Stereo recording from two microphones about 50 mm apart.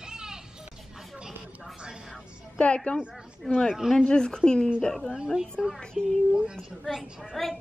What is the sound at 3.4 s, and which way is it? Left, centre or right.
Speech, centre.